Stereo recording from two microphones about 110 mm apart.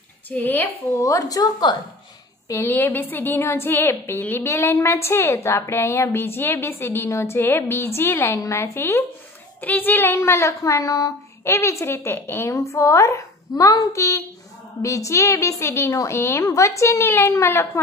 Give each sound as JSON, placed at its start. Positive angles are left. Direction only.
{"t": 0.3, "sound": "a woman's voice", "side_deg": 15}
{"t": 1.0, "sound": "a woman's voice", "side_deg": 30}
{"t": 2.4, "sound": "a woman's voice", "side_deg": 25}